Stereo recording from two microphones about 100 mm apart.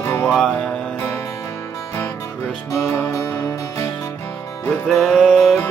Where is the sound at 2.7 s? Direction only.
30° left (ahead or behind).